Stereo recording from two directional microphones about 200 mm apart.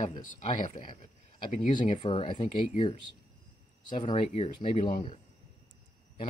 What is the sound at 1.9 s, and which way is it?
Speech, 25° left (ahead or behind).